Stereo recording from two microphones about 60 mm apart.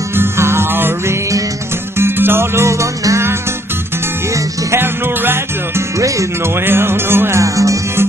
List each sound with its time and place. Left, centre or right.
0.1 s music: right
4.7 s music: right
5.9 s music: right
6.4 s music: right
7.3 s music: right